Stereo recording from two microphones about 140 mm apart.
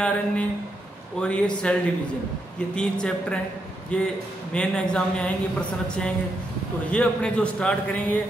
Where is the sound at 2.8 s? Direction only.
5° left (ahead or behind).